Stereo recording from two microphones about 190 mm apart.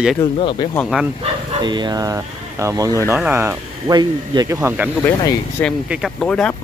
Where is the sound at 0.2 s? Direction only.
25° left (ahead or behind).